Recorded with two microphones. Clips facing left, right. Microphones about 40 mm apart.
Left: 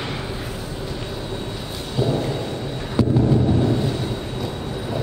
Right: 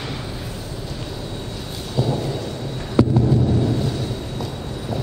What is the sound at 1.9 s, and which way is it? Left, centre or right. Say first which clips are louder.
Thunder: left 1 dB; centre.